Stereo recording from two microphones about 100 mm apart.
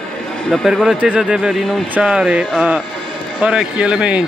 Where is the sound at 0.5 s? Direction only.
5° left (ahead or behind).